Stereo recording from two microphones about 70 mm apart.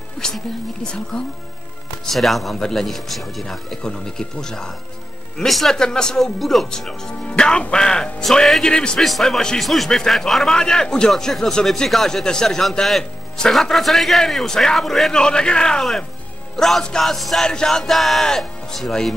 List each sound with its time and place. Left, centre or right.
0.2 s music: centre
1.1 s speech: centre